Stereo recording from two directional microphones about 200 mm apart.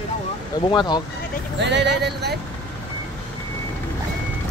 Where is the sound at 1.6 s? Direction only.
60° right (ahead or behind).